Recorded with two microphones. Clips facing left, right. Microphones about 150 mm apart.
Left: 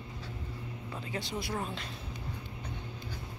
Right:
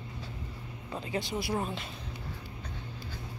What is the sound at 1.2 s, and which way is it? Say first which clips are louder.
Speech: right 3 dB; 15° right (ahead or behind).